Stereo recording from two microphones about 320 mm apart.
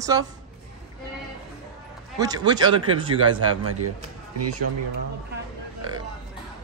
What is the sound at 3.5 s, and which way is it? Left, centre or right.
A man's voice, right.